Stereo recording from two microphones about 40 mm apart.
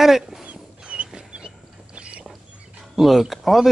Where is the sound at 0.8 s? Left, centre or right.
Right.